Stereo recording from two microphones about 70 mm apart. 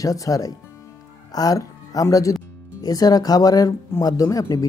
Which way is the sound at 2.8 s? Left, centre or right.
Left.